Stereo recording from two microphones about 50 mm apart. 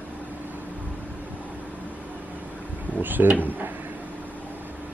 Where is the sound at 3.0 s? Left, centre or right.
Right.